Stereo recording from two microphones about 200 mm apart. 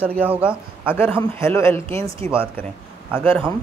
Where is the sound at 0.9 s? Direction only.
10° left (ahead or behind).